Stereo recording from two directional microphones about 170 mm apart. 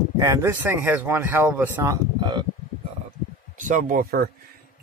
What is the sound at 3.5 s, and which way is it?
Speech, 50° right (ahead or behind).